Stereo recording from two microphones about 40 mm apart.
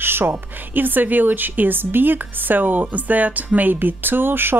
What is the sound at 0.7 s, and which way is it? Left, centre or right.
A woman's voice, right.